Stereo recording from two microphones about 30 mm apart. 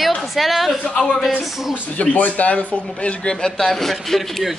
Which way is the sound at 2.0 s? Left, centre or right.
Left.